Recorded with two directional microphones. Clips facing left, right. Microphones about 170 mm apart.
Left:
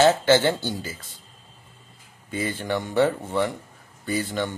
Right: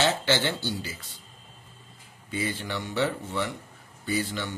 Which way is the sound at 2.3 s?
50° left (ahead or behind).